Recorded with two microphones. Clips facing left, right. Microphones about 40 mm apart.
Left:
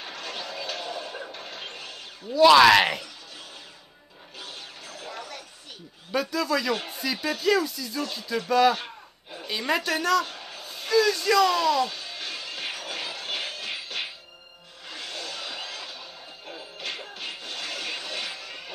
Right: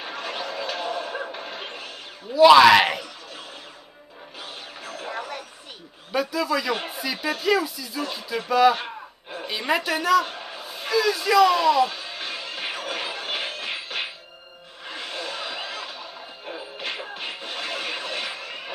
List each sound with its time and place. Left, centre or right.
0.0 s a sound: centre
2.3 s speech: centre
4.8 s music: right
6.1 s speech: centre
8.7 s gasp: right
9.5 s speech: centre
10.2 s a sound: centre